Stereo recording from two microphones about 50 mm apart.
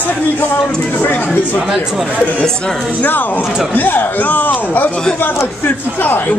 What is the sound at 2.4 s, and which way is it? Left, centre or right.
Speech, centre.